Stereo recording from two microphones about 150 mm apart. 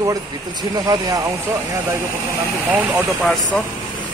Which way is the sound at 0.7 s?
25° right (ahead or behind).